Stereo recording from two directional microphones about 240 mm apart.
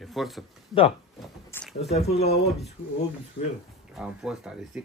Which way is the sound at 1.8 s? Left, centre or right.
Left.